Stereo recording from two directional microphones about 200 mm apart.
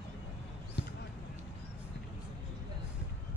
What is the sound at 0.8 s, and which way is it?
Basketball bounce, 55° left (ahead or behind).